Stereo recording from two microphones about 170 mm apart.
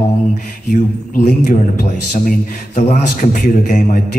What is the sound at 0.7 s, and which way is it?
A man's voice, 50° left (ahead or behind).